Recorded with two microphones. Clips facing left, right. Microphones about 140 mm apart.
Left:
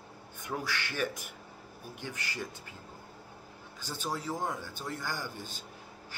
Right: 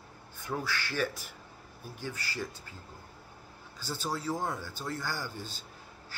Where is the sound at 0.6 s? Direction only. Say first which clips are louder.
Right 1 dB; 15° left (ahead or behind).